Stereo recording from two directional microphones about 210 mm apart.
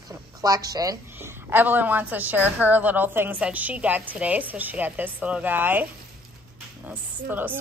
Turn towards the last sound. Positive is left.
turn(degrees=-10)  # may be behind; listen again after turning